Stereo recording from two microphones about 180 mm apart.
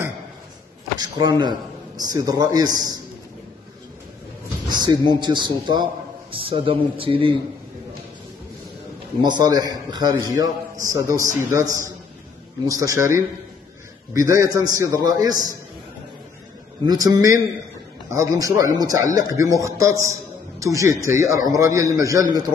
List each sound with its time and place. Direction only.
0.9 s a sound: 20° right (ahead or behind)
1.4 s a man's voice: 20° right (ahead or behind)
4.6 s a man's voice: 25° right (ahead or behind)
9.2 s a man's voice: 20° right (ahead or behind)
16.8 s a man's voice: 20° right (ahead or behind)